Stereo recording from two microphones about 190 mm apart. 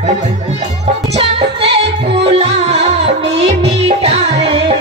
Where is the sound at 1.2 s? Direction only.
30° right (ahead or behind).